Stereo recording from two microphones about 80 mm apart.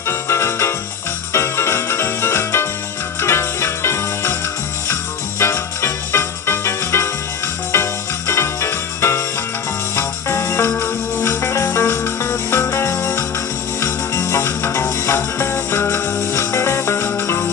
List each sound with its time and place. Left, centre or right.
0.1 s music: left
5.4 s music: left